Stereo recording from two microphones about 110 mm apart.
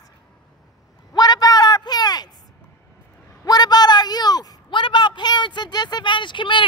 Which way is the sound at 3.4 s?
40° left (ahead or behind).